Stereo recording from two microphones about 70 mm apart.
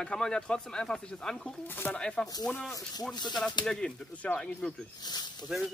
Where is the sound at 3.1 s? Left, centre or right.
Left.